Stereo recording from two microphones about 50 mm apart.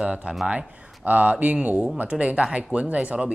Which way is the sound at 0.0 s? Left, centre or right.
Centre.